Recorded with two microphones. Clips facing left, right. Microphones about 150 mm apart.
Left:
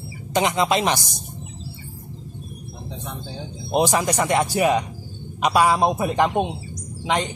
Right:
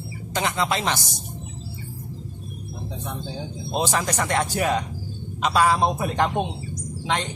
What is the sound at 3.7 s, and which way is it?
Speech, 15° left (ahead or behind).